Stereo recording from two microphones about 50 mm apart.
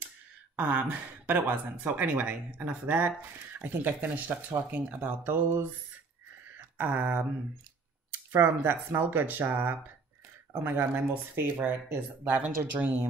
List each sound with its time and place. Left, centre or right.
0.6 s speech: right
8.4 s speech: right